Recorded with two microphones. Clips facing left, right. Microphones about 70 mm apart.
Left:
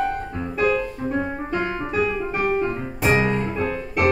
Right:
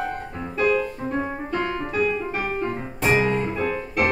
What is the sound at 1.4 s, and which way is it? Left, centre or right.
Music, left.